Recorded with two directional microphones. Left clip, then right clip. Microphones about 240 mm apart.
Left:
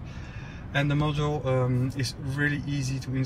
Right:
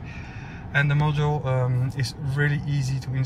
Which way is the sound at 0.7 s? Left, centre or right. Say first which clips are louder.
Right 3 dB; centre.